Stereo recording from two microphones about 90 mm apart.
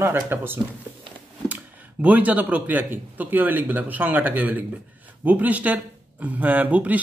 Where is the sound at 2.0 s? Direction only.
20° right (ahead or behind).